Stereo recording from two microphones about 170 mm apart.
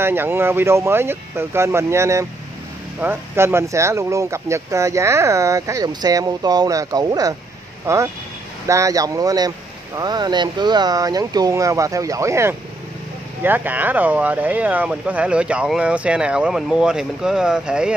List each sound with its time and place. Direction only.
0.0 s speech: 15° right (ahead or behind)